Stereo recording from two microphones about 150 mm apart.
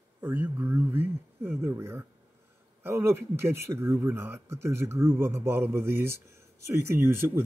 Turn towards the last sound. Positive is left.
turn(degrees=-15)  # may be behind; listen again after turning